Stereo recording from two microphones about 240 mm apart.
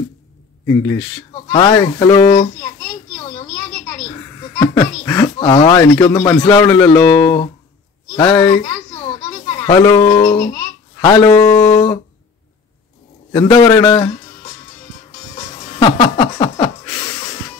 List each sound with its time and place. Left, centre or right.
0.7 s a man's voice: centre
4.1 s a man's voice: centre
13.3 s a man's voice: centre
15.3 s a sound: left